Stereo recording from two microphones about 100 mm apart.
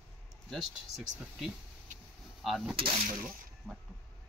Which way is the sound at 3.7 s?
15° left (ahead or behind).